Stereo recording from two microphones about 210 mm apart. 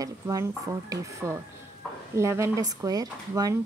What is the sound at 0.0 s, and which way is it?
Speech, 15° right (ahead or behind).